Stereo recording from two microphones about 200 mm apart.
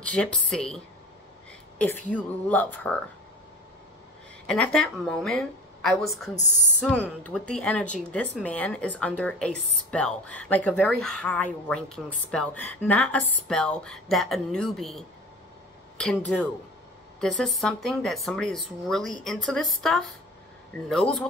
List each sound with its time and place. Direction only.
0.0 s speech: 5° left (ahead or behind)
4.5 s speech: 5° left (ahead or behind)
6.3 s speech: 35° left (ahead or behind)
6.8 s speech: 5° left (ahead or behind)